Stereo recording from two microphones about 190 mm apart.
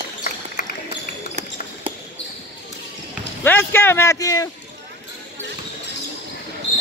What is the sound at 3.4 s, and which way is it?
Speech, 10° left (ahead or behind).